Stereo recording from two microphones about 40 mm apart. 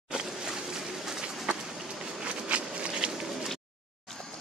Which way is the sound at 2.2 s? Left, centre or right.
Right.